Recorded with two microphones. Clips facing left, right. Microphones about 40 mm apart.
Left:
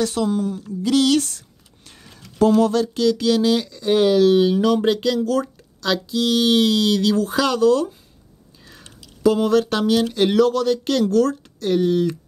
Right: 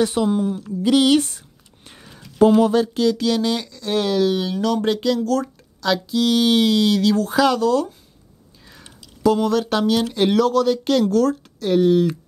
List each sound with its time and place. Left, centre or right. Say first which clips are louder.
0.0 s speech: right 2 dB; centre
3.8 s speech: left 4 dB; centre